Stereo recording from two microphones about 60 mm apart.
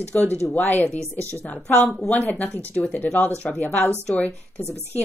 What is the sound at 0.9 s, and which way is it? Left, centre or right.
Speech, right.